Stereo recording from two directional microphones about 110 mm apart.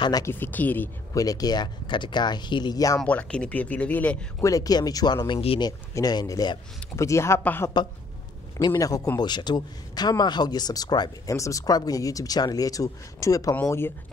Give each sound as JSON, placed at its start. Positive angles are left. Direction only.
{"t": 0.2, "sound": "speech", "side_deg": 20}
{"t": 1.1, "sound": "a man's voice", "side_deg": 35}
{"t": 3.0, "sound": "speech", "side_deg": 10}
{"t": 4.4, "sound": "a man's voice", "side_deg": 30}
{"t": 7.0, "sound": "speech", "side_deg": 25}
{"t": 8.5, "sound": "a man's voice", "side_deg": 35}